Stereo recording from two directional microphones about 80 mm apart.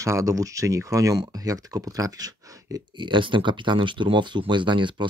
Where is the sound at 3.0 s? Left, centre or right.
Right.